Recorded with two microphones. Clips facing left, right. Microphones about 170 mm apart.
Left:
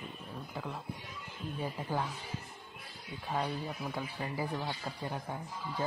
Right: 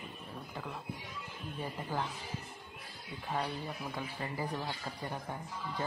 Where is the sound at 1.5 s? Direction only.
10° left (ahead or behind).